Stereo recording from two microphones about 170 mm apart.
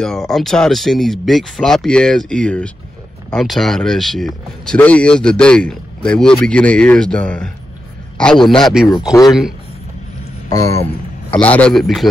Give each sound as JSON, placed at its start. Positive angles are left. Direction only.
{"t": 0.0, "sound": "speech", "side_deg": 5}
{"t": 10.5, "sound": "speech", "side_deg": 20}